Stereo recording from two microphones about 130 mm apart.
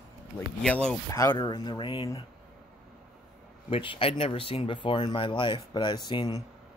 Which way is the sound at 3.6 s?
40° left (ahead or behind).